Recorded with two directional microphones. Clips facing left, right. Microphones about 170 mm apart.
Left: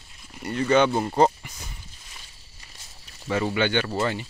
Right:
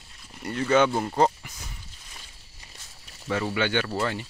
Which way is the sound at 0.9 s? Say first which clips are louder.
Left 2 dB; 10° left (ahead or behind).